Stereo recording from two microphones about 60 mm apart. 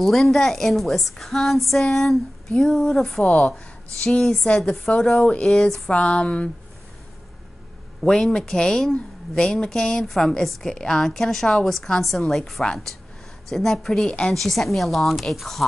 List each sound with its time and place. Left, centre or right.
0.0 s a woman's voice: centre
8.0 s a woman's voice: centre